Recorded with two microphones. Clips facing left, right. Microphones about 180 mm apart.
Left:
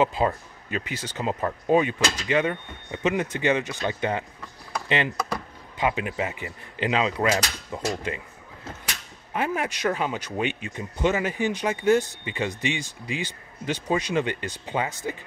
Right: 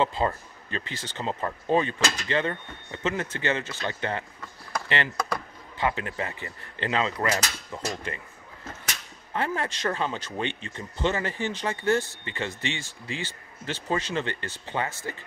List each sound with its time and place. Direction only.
0.0 s speech: 10° left (ahead or behind)
4.7 s a sound: 15° left (ahead or behind)
5.3 s speech: 15° left (ahead or behind)
9.3 s speech: 10° left (ahead or behind)